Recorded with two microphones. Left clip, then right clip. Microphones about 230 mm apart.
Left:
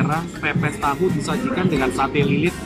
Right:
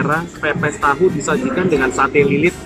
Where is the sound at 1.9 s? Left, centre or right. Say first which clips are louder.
Right 6 dB; centre.